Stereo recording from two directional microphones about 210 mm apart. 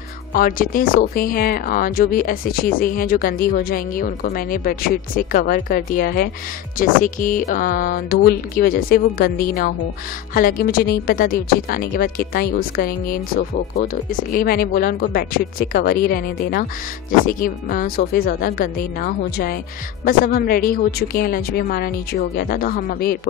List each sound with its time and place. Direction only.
0.3 s speech: 40° left (ahead or behind)